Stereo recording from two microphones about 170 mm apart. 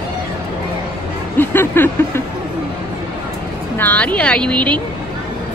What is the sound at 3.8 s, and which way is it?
Speech, 10° left (ahead or behind).